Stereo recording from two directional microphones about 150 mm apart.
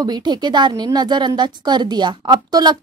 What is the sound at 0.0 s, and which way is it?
Speech, 25° right (ahead or behind).